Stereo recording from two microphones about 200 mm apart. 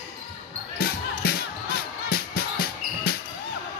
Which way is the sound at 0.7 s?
50° left (ahead or behind).